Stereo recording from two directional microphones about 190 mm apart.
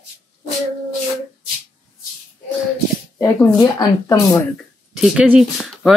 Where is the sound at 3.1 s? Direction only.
15° left (ahead or behind).